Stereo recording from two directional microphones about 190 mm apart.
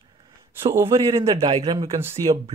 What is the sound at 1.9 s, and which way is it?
Speech, 10° right (ahead or behind).